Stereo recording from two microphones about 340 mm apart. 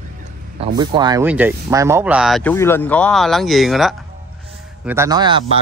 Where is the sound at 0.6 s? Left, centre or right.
Centre.